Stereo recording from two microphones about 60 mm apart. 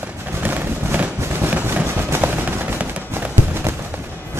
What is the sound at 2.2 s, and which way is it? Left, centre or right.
Machine gun, right.